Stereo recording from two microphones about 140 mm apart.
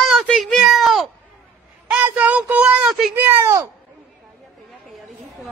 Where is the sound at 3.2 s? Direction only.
20° right (ahead or behind).